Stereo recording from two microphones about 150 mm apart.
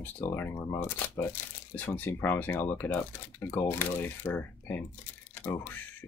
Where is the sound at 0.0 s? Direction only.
15° left (ahead or behind).